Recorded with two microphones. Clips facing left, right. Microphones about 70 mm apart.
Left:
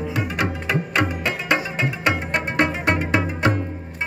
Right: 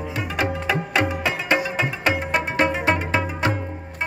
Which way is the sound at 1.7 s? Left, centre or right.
Centre.